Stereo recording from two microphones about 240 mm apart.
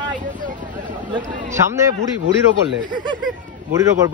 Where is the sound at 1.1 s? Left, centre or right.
Centre.